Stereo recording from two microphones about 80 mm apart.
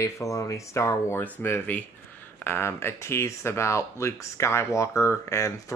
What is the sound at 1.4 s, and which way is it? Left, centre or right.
Speech, left.